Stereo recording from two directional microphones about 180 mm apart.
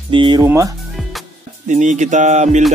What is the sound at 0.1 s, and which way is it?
Speech, 25° right (ahead or behind).